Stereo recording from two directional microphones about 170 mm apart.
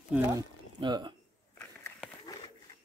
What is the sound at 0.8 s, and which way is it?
Speech, 25° right (ahead or behind).